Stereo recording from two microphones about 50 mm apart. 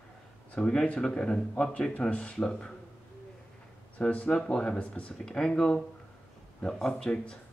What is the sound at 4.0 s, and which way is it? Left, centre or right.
Speech, left.